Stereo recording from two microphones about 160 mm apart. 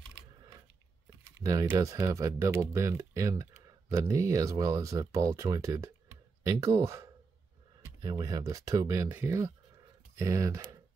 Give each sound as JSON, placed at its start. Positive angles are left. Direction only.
{"t": 1.4, "sound": "speech", "side_deg": -20}